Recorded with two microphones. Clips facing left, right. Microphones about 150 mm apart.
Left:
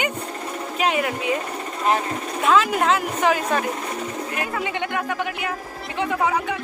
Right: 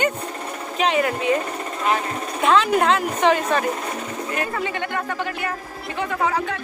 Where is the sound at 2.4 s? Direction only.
Centre (ahead or behind).